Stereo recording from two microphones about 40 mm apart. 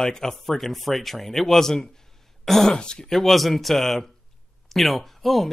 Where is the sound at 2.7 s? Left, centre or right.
Left.